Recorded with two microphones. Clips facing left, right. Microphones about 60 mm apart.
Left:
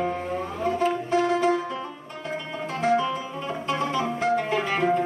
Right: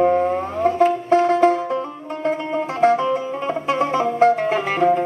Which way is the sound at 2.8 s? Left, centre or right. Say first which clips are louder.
Right 6 dB; right.